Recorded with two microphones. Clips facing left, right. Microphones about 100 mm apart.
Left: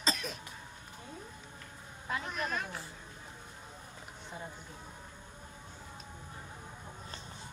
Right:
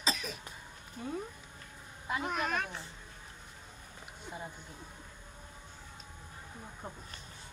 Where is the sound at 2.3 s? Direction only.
60° right (ahead or behind).